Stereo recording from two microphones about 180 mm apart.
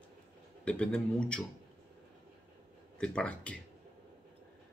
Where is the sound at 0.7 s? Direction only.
5° left (ahead or behind).